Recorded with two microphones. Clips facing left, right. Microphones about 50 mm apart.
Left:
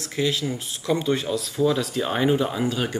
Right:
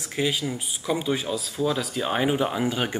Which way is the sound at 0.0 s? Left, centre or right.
Centre.